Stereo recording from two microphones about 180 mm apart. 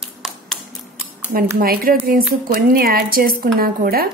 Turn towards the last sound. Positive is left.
turn(degrees=-55)  # may be behind; listen again after turning